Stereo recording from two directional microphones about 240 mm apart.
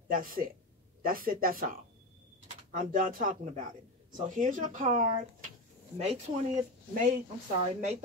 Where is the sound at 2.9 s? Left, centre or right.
Right.